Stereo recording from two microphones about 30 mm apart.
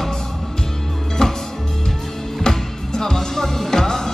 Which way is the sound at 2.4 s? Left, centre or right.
Centre.